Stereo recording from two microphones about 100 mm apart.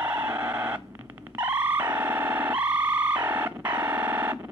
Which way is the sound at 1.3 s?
20° right (ahead or behind).